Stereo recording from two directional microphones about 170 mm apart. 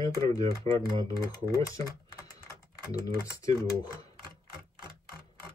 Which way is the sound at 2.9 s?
20° left (ahead or behind).